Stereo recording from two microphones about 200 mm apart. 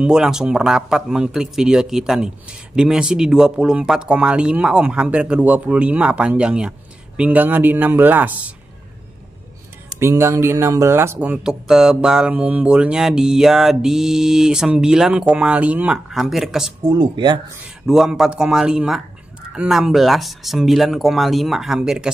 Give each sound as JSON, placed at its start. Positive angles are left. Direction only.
{"t": 0.0, "sound": "speech", "side_deg": -5}
{"t": 9.9, "sound": "speech", "side_deg": -15}
{"t": 16.8, "sound": "speech", "side_deg": -20}
{"t": 17.8, "sound": "speech", "side_deg": 0}